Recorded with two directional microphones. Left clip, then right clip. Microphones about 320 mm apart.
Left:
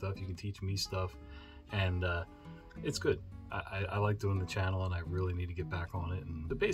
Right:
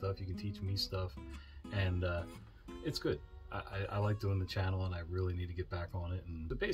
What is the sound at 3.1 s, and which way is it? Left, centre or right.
Speech, centre.